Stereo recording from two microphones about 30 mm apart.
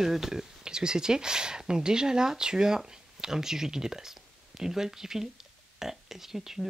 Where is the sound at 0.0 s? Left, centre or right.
Centre.